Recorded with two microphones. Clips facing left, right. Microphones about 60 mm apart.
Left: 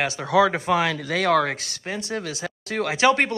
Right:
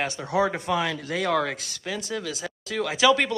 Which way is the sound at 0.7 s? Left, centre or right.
Left.